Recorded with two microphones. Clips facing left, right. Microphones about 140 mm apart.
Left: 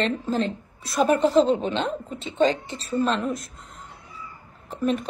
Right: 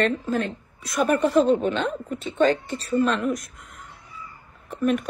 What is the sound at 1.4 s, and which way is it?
Speech, 50° right (ahead or behind).